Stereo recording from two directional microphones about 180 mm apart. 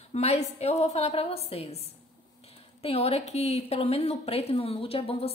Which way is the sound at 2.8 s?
35° left (ahead or behind).